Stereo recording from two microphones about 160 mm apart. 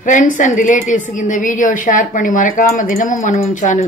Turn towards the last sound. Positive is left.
turn(degrees=50)  # may be behind; listen again after turning